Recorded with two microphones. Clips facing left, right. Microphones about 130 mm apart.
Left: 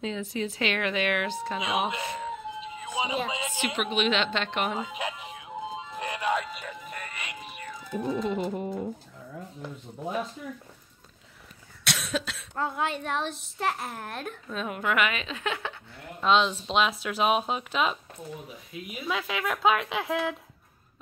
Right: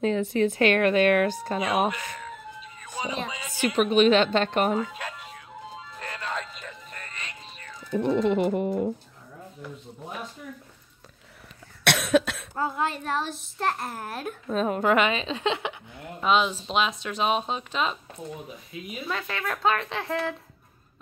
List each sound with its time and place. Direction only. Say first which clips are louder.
0.0 s a woman's voice: right 8 dB; 55° right (ahead or behind)
1.9 s music: left 1 dB; 25° left (ahead or behind)
3.6 s a woman's voice: right 8 dB; 40° right (ahead or behind)
4.7 s music: right 2 dB; 15° left (ahead or behind)
8.0 s speech: right 6 dB; 80° right
11.8 s cough: right 9 dB; 60° right (ahead or behind)
12.5 s speech: right 1 dB; centre (ahead or behind)
14.5 s a woman's voice: right 7 dB; 40° right (ahead or behind)
16.2 s speech: even; 5° right (ahead or behind)